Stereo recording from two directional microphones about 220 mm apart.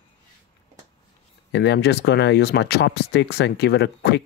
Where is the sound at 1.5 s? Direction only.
50° left (ahead or behind).